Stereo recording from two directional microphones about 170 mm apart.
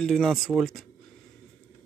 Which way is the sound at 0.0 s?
Centre (ahead or behind).